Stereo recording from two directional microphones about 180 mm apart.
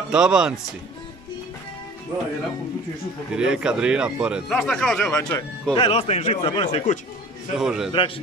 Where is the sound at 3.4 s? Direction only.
5° right (ahead or behind); by 5.4 s 10° left (ahead or behind).